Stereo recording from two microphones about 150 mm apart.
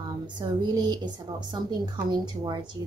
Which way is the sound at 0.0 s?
30° right (ahead or behind).